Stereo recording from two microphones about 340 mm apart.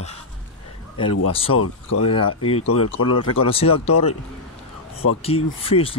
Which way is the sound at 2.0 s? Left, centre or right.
Centre.